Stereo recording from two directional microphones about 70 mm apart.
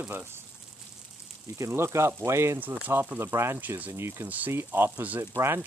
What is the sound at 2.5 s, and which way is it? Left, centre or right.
Speech, right.